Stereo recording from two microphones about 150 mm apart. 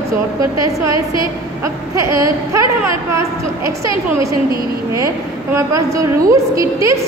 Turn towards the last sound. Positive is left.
turn(degrees=-20)  # may be behind; listen again after turning